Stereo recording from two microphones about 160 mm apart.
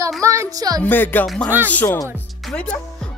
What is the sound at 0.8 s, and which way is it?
A man's voice, 10° left (ahead or behind).